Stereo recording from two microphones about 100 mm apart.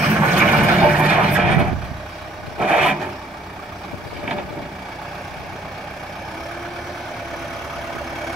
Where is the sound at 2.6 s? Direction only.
5° right (ahead or behind).